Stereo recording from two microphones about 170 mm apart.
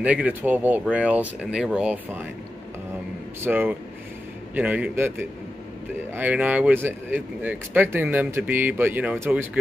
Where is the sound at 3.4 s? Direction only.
10° right (ahead or behind).